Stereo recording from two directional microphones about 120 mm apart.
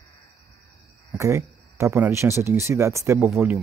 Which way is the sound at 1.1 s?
25° right (ahead or behind).